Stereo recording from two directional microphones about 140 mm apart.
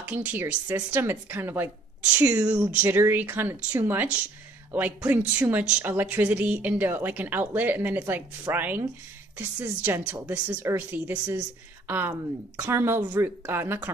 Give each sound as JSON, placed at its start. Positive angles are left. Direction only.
{"t": 0.0, "sound": "speech", "side_deg": -10}